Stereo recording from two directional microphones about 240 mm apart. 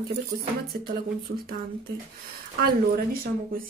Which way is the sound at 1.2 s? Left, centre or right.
Right.